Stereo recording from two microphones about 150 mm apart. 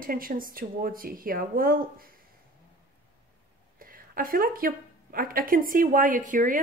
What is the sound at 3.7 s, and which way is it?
A woman's voice, 70° right (ahead or behind).